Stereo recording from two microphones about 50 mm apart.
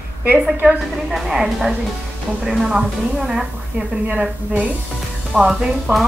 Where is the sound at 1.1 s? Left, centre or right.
Centre.